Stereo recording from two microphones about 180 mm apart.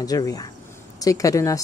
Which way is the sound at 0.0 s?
20° left (ahead or behind).